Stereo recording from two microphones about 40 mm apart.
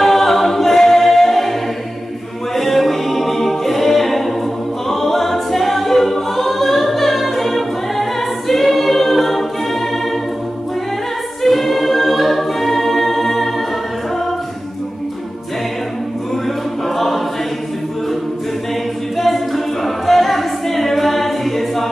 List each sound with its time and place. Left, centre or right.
0.0 s a capella: centre
2.5 s music: centre
4.8 s choir: centre
11.4 s choir: centre
16.4 s music: centre
19.1 s a capella: centre